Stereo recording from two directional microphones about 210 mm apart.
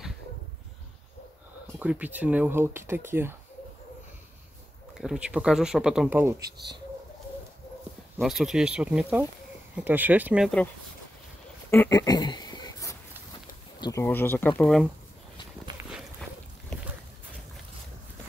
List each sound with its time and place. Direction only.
1.8 s speech: 5° right (ahead or behind)
4.9 s speech: 5° right (ahead or behind)
8.2 s speech: centre (ahead or behind)
11.7 s a sound: 15° left (ahead or behind)
13.7 s speech: 15° left (ahead or behind); by 14.9 s centre (ahead or behind)
15.8 s walk: centre (ahead or behind)